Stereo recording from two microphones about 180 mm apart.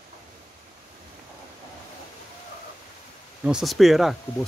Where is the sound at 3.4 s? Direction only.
Centre (ahead or behind).